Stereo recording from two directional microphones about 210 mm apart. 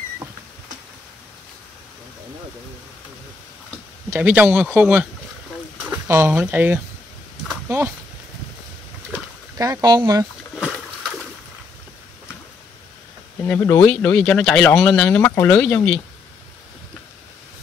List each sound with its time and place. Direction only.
4.1 s speech: 10° right (ahead or behind)
7.4 s a sound: 10° right (ahead or behind)
9.6 s speech: 15° right (ahead or behind)
13.4 s speech: 10° left (ahead or behind)